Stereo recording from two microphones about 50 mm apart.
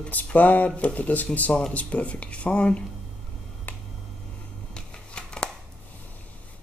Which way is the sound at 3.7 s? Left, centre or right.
Left.